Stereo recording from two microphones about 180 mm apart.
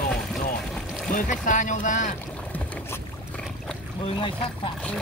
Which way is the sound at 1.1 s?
45° left (ahead or behind).